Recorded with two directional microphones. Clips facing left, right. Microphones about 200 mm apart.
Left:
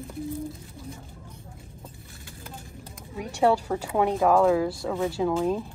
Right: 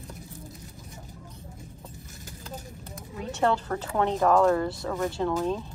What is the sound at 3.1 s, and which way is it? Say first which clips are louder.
Speech: left 3 dB; 10° left (ahead or behind).